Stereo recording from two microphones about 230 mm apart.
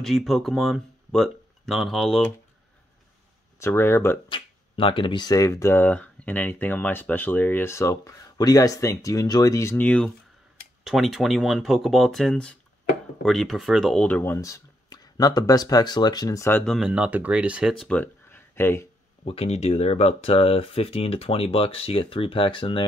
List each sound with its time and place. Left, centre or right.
0.0 s speech: centre
3.5 s speech: centre
4.3 s speech: left
19.2 s speech: left